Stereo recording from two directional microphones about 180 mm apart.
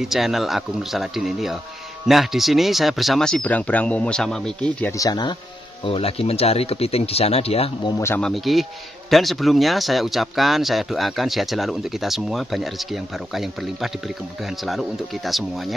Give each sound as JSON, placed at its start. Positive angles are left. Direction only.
{"t": 0.0, "sound": "speech", "side_deg": 0}
{"t": 4.9, "sound": "speech", "side_deg": 20}
{"t": 5.9, "sound": "speech", "side_deg": 30}
{"t": 8.0, "sound": "speech", "side_deg": 10}
{"t": 8.3, "sound": "speech", "side_deg": 0}